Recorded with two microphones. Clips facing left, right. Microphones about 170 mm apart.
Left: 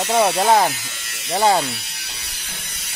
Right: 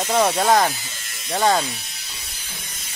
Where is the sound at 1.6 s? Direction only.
75° left (ahead or behind).